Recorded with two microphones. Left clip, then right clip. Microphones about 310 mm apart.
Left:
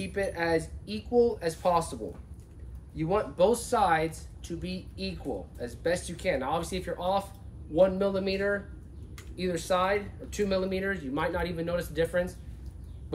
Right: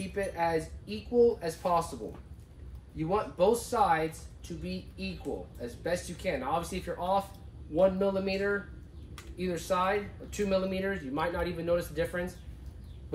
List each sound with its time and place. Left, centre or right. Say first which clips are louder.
0.0 s speech: left 1 dB; centre
3.0 s speech: left 3 dB; centre